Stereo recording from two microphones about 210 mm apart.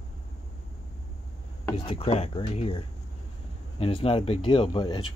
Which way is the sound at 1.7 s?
25° left (ahead or behind).